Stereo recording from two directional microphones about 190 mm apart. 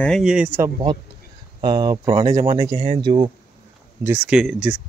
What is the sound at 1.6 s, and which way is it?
Speech, 20° right (ahead or behind).